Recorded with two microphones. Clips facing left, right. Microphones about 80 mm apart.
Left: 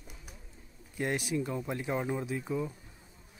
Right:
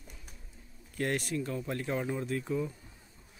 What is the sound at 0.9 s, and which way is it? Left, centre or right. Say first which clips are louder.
Speech: even; centre.